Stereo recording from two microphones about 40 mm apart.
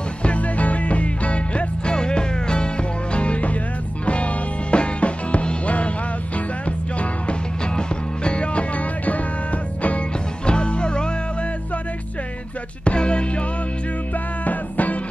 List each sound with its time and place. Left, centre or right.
0.2 s music: left
7.7 s music: left
10.4 s music: left
12.8 s music: left
14.4 s music: left